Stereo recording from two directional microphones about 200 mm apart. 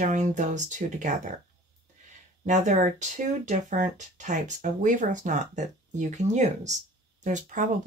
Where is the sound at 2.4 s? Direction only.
40° right (ahead or behind).